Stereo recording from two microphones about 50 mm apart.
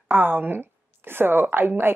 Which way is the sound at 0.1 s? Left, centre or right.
Right.